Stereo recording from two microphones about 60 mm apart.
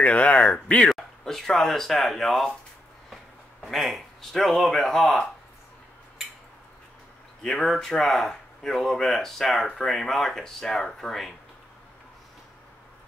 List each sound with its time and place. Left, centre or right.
0.0 s speech: left
0.7 s speech: centre
3.6 s speech: centre
7.4 s speech: centre